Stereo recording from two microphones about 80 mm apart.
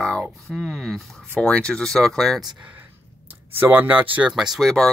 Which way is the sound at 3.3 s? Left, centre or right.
Right.